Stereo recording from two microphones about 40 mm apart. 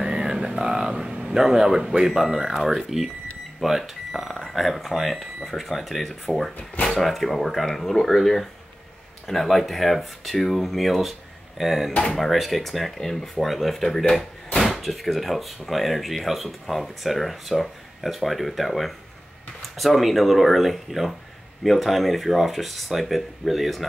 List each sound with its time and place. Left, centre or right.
0.0 s vehicle: centre
1.4 s speech: centre